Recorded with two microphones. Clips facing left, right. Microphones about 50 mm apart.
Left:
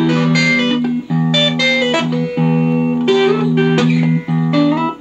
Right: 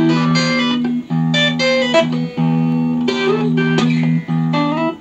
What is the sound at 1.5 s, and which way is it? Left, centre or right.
Music, left.